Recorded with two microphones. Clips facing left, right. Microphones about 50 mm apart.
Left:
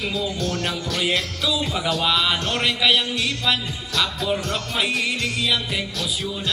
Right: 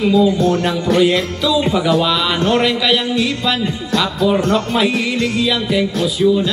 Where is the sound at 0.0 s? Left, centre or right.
Right.